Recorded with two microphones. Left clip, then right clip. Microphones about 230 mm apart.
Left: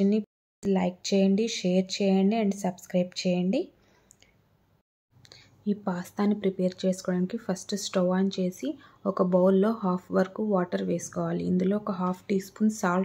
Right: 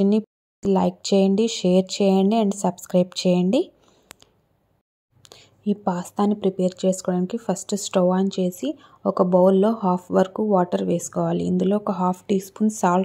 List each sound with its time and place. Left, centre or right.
0.0 s speech: right
5.2 s speech: right